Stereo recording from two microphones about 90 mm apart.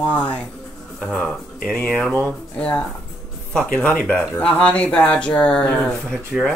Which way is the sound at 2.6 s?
15° left (ahead or behind).